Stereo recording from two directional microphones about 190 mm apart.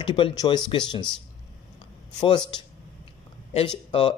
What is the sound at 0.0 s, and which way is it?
Speech, 25° left (ahead or behind).